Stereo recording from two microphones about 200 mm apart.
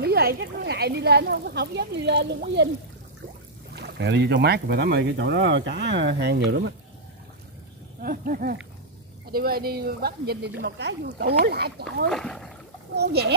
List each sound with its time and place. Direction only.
0.0 s speech: 50° right (ahead or behind)
3.7 s speech: 55° right (ahead or behind)
8.0 s speech: 45° right (ahead or behind)
12.1 s speech: centre (ahead or behind)
12.9 s speech: 55° right (ahead or behind)